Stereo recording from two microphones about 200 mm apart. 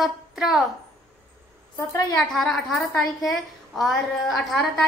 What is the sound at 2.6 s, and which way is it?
A woman's voice, centre (ahead or behind).